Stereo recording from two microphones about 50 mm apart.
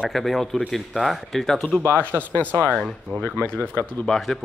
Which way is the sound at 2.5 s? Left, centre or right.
Left.